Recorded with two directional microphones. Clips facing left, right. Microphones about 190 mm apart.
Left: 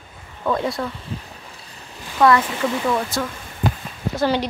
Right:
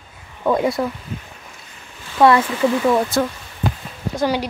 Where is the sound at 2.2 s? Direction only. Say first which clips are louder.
Right 2 dB; 20° right (ahead or behind).